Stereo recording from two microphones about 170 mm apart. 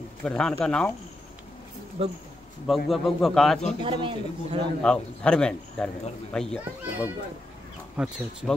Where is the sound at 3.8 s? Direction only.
30° right (ahead or behind).